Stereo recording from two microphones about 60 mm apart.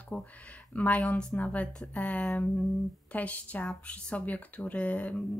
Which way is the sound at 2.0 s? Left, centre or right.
Left.